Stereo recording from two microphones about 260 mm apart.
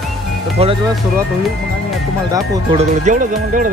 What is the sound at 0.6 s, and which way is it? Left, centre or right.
Speech, right.